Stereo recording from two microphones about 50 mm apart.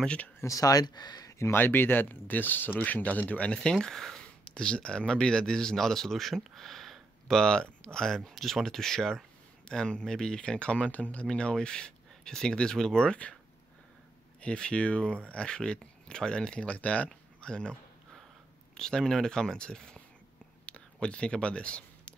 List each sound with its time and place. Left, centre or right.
0.4 s speech: left
1.6 s speech: left; by 13.4 s centre
14.4 s speech: left
17.1 s a sound: centre
18.8 s speech: centre
20.6 s a sound: left